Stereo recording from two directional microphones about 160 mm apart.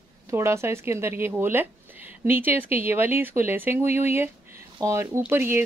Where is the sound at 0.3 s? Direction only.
15° right (ahead or behind).